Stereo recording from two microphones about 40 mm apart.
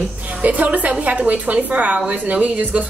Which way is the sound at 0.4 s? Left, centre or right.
Right.